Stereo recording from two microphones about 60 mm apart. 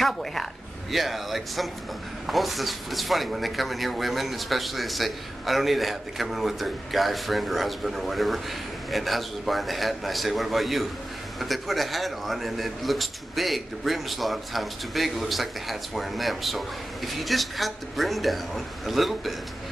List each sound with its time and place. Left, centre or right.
0.0 s a man's voice: centre